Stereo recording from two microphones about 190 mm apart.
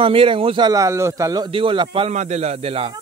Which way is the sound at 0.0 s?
25° right (ahead or behind).